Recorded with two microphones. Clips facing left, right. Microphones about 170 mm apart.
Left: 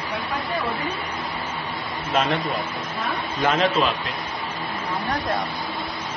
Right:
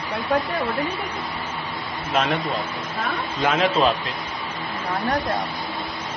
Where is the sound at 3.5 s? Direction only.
10° right (ahead or behind).